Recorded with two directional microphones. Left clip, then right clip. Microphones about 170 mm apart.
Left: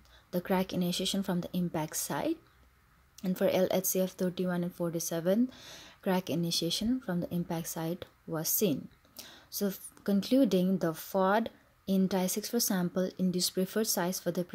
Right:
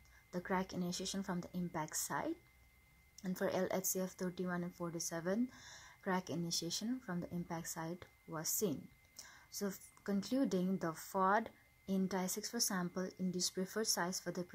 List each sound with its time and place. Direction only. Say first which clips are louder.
0.3 s speech: left 8 dB; 30° left (ahead or behind)